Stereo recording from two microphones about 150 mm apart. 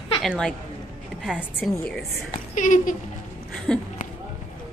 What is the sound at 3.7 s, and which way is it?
Speech, 5° left (ahead or behind).